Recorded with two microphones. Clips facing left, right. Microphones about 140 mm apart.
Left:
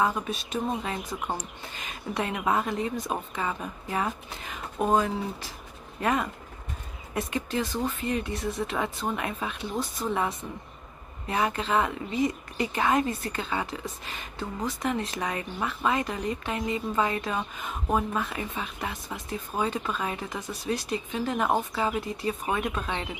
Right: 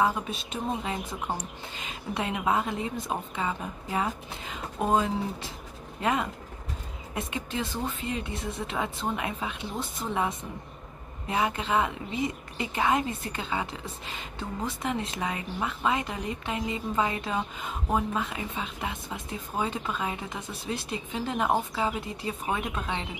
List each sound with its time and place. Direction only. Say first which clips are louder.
0.0 s speech: even; 25° right (ahead or behind)